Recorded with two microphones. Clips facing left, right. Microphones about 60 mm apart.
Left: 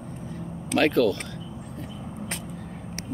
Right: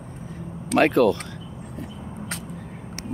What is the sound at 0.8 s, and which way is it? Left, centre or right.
Speech, right.